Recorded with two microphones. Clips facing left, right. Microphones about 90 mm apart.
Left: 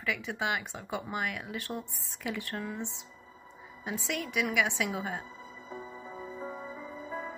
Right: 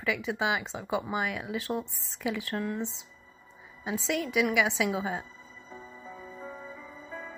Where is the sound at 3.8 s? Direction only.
15° right (ahead or behind).